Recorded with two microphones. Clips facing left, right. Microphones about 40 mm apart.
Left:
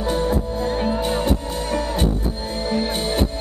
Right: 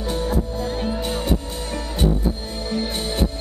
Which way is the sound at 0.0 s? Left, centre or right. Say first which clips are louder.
Left 3 dB; left.